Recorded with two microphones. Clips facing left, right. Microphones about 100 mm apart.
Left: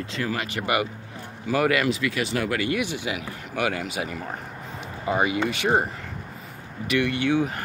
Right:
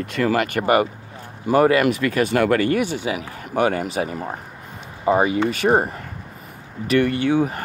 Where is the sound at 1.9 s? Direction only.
50° right (ahead or behind).